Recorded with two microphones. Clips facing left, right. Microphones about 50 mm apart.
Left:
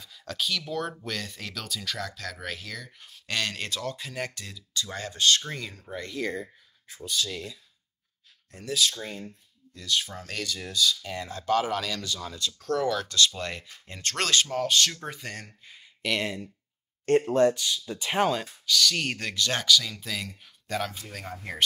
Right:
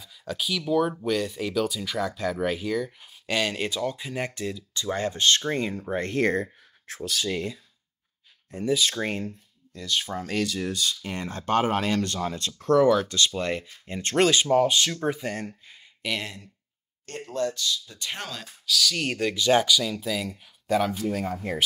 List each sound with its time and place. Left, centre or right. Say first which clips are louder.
0.0 s speech: right 1 dB; centre; by 6.5 s right
6.9 s speech: right 1 dB; right
7.2 s speech: right 8 dB; right
8.6 s speech: right 4 dB; centre
10.4 s speech: left 4 dB; right; by 15.5 s centre
16.0 s speech: left 2 dB; centre
17.3 s speech: left 5 dB; left
17.9 s speech: left 10 dB; centre
18.7 s speech: even; centre